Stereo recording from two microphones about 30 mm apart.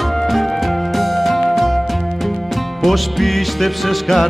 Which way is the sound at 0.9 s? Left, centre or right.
Centre.